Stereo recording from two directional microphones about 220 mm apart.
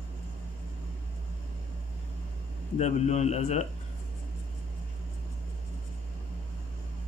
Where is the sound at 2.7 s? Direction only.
30° left (ahead or behind).